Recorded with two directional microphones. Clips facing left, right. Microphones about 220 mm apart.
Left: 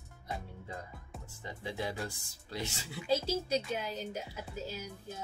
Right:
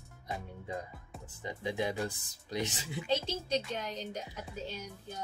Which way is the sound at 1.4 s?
15° right (ahead or behind).